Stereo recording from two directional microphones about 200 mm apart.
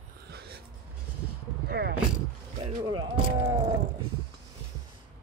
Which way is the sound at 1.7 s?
55° right (ahead or behind).